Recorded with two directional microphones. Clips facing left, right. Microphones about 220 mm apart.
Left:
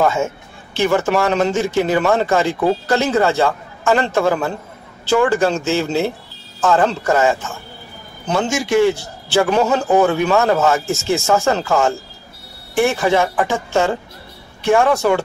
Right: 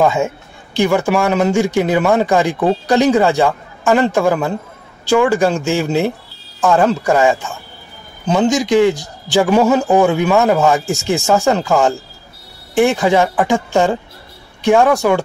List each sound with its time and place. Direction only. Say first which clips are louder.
0.0 s a man's voice: right 3 dB; 15° right (ahead or behind)